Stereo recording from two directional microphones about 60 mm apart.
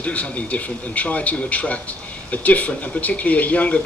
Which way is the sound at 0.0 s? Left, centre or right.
Left.